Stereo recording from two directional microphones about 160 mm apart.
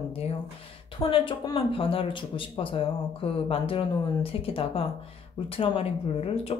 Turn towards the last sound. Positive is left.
turn(degrees=40)  # may be behind; listen again after turning